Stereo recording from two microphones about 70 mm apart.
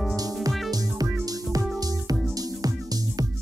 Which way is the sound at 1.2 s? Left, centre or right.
Right.